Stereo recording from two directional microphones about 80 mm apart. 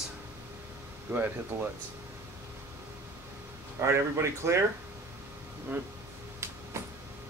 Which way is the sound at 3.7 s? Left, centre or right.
Right.